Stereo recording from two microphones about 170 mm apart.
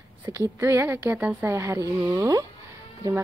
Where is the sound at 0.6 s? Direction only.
15° right (ahead or behind).